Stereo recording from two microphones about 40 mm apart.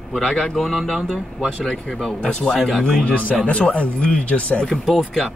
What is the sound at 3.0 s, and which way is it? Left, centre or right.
Speech, left.